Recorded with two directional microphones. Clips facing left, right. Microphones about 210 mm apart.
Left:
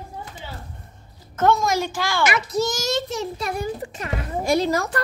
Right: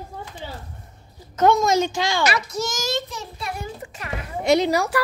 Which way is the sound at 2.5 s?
40° left (ahead or behind).